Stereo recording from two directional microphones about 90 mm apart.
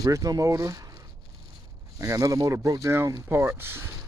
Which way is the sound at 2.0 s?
40° right (ahead or behind).